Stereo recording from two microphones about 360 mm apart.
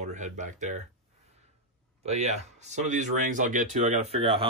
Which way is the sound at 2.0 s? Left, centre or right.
Centre.